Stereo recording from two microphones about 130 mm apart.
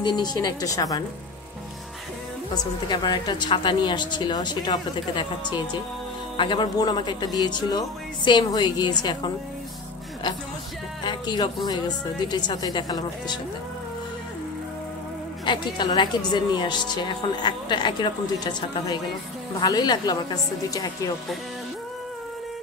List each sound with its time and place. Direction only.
0.0 s a woman's voice: 30° left (ahead or behind)
2.5 s a woman's voice: 35° left (ahead or behind)
11.1 s a woman's voice: 35° left (ahead or behind)
15.4 s a woman's voice: 35° left (ahead or behind)